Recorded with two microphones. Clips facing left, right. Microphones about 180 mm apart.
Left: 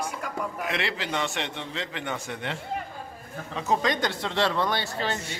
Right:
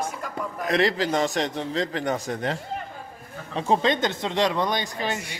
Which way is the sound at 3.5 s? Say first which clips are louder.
Right 4 dB; 30° right (ahead or behind).